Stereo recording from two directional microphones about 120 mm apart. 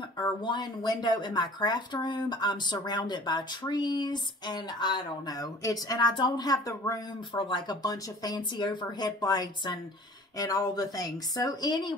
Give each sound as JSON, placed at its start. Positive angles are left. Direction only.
{"t": 0.2, "sound": "speech", "side_deg": 40}
{"t": 7.3, "sound": "speech", "side_deg": 40}